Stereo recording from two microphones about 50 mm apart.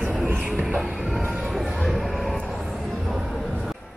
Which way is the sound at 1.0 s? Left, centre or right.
Centre.